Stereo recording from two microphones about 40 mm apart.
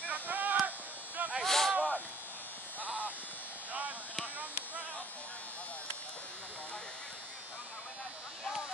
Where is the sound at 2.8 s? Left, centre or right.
Right.